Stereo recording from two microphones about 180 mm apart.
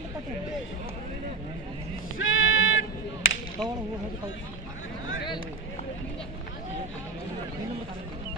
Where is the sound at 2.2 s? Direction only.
90° left.